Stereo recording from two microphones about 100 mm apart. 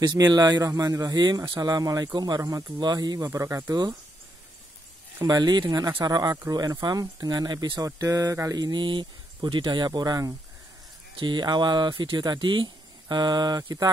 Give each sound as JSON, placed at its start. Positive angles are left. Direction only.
{"t": 0.3, "sound": "speech", "side_deg": -40}
{"t": 3.3, "sound": "speech", "side_deg": -30}
{"t": 5.2, "sound": "speech", "side_deg": -45}